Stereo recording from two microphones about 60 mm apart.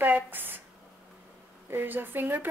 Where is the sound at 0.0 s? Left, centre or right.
Right.